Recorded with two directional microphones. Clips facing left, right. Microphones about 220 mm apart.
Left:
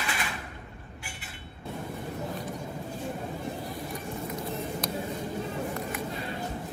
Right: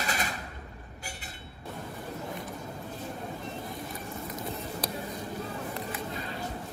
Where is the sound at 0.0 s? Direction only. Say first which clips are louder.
Right 1 dB; 40° right (ahead or behind).